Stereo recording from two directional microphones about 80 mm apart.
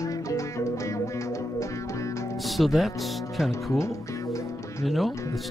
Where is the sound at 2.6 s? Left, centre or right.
Centre.